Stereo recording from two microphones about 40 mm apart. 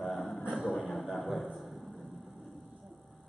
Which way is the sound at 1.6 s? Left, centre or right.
Centre.